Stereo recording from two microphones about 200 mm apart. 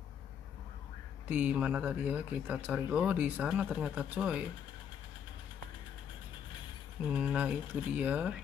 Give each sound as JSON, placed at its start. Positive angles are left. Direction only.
{"t": 1.3, "sound": "speech", "side_deg": -5}
{"t": 7.1, "sound": "speech", "side_deg": -5}